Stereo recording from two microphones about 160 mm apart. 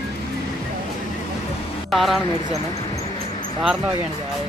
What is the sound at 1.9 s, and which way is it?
Speech, centre (ahead or behind).